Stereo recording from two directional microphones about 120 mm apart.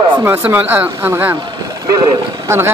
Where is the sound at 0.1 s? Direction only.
15° right (ahead or behind).